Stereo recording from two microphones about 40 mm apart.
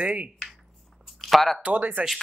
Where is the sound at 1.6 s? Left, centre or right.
Right.